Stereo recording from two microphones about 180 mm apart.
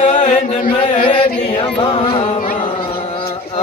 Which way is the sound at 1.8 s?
30° left (ahead or behind).